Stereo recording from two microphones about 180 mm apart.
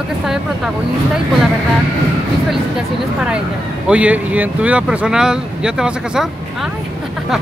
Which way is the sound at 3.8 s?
5° right (ahead or behind).